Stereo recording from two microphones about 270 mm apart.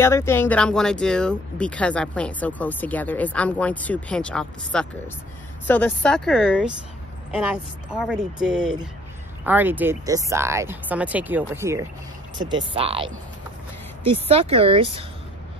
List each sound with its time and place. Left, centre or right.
0.0 s speech: centre; by 13.2 s right
14.2 s speech: right